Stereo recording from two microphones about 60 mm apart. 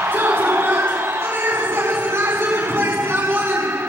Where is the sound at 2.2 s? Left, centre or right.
Right.